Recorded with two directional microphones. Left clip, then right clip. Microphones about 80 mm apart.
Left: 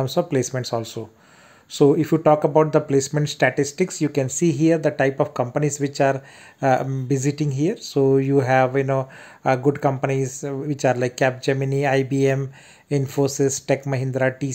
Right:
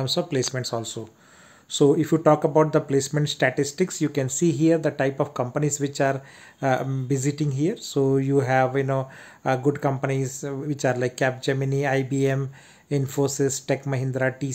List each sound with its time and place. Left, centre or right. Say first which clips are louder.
0.0 s speech: left 3 dB; left
0.6 s speech: left 3 dB; left